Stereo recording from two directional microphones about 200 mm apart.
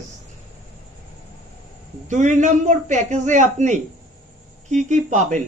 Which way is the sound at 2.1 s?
40° right (ahead or behind).